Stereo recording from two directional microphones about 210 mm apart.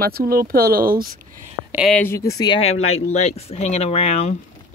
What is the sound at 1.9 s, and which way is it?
Speech, 10° left (ahead or behind).